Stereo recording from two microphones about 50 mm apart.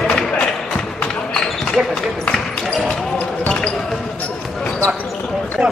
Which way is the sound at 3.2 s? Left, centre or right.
Left.